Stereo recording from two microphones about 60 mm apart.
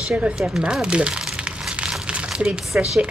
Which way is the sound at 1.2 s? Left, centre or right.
Centre.